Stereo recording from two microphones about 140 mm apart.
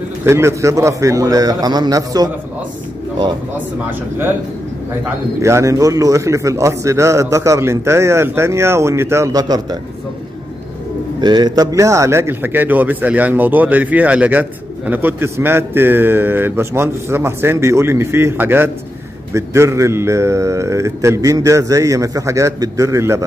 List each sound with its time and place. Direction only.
0.2 s a man's voice: 20° right (ahead or behind)
5.4 s a man's voice: 20° right (ahead or behind)
11.1 s a man's voice: 30° right (ahead or behind)